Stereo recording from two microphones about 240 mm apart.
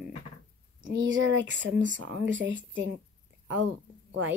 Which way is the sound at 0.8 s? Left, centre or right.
Right.